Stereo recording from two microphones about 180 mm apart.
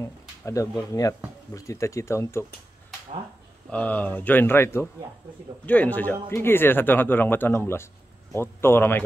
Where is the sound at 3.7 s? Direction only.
10° left (ahead or behind).